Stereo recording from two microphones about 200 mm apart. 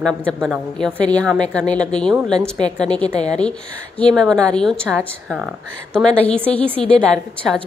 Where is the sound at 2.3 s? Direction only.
20° right (ahead or behind).